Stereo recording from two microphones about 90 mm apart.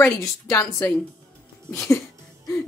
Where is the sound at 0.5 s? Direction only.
30° left (ahead or behind).